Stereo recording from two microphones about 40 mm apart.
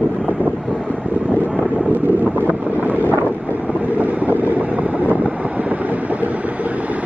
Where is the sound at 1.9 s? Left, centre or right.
Right.